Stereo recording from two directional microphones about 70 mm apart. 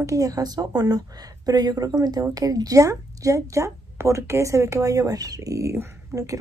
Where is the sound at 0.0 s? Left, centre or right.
Right.